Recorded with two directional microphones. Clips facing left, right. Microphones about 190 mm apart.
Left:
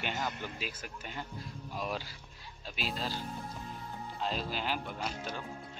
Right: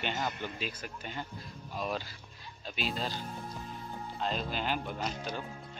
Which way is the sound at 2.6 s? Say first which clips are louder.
Right 2 dB; 5° left (ahead or behind).